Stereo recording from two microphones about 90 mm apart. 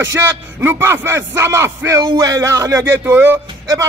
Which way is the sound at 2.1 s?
45° right (ahead or behind).